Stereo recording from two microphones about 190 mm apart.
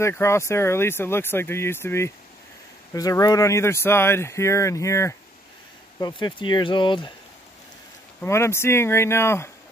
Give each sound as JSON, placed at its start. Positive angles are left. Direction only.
{"t": 0.0, "sound": "speech", "side_deg": 15}
{"t": 8.2, "sound": "speech", "side_deg": 15}